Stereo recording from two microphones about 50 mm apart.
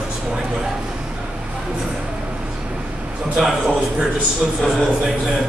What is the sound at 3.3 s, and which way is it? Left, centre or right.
Speech, centre.